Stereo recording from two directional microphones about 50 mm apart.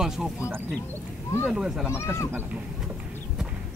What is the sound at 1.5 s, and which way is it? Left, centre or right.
Speech, centre.